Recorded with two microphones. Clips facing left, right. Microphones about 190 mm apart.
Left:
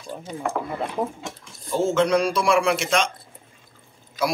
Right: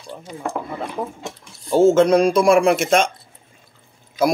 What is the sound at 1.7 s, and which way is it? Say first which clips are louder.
Speech: right 7 dB; 45° right (ahead or behind).